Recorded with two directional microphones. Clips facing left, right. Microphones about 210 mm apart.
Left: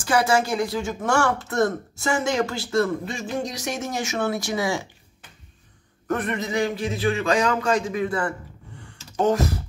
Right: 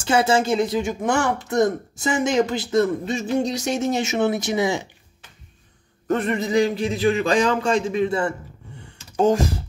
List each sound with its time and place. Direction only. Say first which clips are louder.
0.0 s speech: right 2 dB; 25° right (ahead or behind)
6.0 s speech: right 4 dB; 25° right (ahead or behind)